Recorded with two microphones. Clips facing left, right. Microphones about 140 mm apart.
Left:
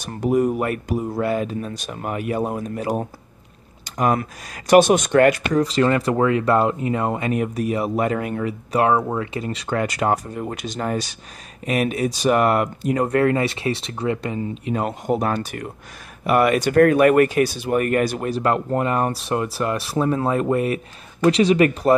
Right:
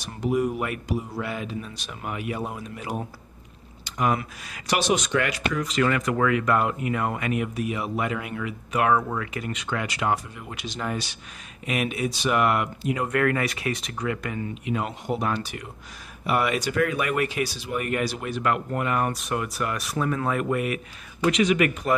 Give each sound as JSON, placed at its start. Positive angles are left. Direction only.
{"t": 0.0, "sound": "speech", "side_deg": 45}